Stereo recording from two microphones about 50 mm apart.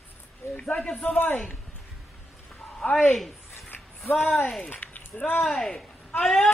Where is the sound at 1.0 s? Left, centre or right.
Left.